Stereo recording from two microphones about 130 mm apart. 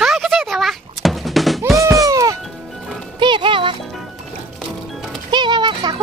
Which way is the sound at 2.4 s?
Centre (ahead or behind).